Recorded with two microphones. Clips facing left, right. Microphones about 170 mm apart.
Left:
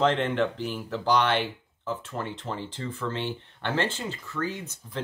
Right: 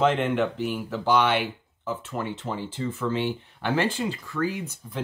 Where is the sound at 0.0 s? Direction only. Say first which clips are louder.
Right 2 dB; 5° right (ahead or behind).